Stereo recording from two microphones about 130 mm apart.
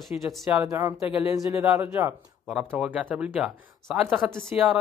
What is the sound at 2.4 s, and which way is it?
Speech, 5° right (ahead or behind).